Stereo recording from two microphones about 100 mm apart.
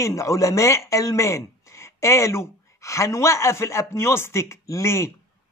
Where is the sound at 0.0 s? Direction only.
30° left (ahead or behind).